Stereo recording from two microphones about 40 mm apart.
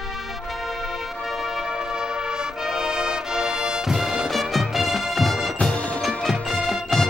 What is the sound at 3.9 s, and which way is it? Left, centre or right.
Music, centre.